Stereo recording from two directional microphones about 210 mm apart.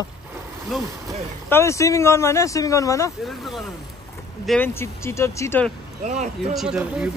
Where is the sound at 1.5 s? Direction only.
15° left (ahead or behind).